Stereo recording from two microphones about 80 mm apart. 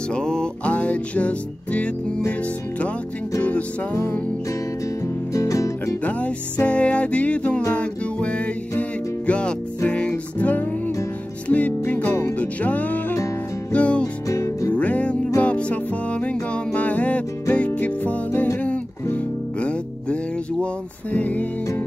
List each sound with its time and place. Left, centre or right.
0.1 s music: centre
3.9 s music: left
5.0 s music: left
6.0 s music: centre
14.3 s music: left
14.7 s music: centre